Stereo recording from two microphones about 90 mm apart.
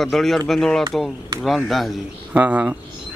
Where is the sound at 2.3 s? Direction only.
15° right (ahead or behind).